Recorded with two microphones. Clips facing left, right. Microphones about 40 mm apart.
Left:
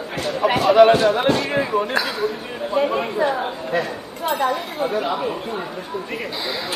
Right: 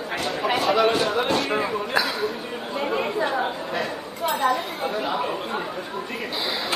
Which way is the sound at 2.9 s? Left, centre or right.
Left.